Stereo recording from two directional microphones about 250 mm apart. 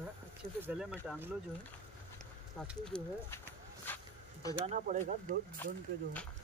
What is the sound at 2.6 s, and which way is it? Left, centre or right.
Speech, centre.